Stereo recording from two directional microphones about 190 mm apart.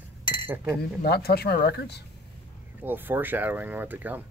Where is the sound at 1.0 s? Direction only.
55° left (ahead or behind).